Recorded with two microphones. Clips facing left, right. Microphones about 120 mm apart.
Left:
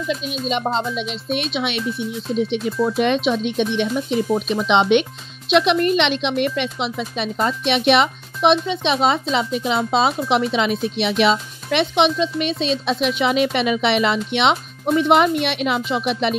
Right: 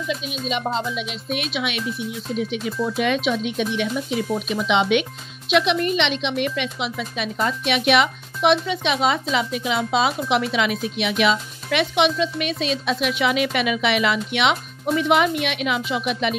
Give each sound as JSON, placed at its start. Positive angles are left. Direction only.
{"t": 0.5, "sound": "speech", "side_deg": 30}